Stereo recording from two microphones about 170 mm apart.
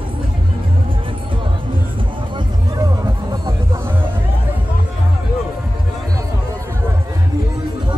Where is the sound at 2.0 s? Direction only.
25° right (ahead or behind).